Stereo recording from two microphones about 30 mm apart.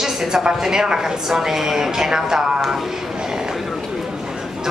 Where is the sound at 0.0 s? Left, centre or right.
Centre.